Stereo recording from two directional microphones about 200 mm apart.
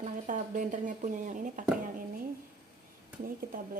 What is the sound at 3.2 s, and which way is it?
Speech, 45° right (ahead or behind).